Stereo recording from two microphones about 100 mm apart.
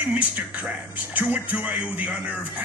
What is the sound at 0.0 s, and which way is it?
Speech, 15° right (ahead or behind).